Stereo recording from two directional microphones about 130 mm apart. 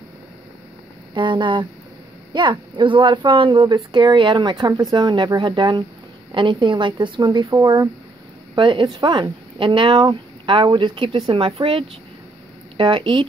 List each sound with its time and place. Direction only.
1.1 s speech: 40° right (ahead or behind)
8.5 s speech: 40° right (ahead or behind)